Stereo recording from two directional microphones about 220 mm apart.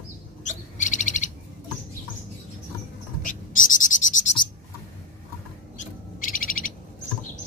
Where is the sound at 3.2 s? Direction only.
35° left (ahead or behind).